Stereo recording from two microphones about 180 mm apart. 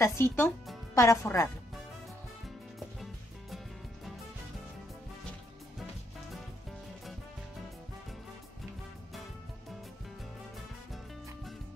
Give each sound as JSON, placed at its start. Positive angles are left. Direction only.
{"t": 0.0, "sound": "speech", "side_deg": 15}
{"t": 3.0, "sound": "music", "side_deg": 0}